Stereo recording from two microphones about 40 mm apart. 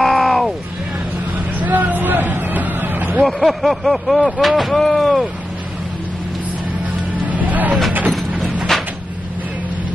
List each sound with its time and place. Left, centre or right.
0.0 s a sound: centre
1.6 s vehicle: right
3.3 s a sound: centre
4.7 s speech: centre
7.2 s vehicle: right
8.7 s cupboard open or close: centre